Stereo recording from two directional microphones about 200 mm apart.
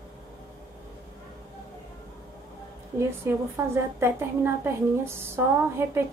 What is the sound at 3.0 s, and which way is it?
A woman's voice, 15° right (ahead or behind).